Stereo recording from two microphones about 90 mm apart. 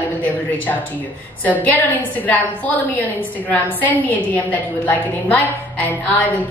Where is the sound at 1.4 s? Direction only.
20° left (ahead or behind).